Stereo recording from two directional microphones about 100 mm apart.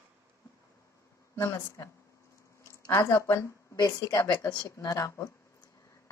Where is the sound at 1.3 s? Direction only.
25° left (ahead or behind).